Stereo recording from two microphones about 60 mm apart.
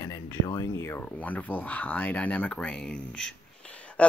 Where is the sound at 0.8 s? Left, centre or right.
Left.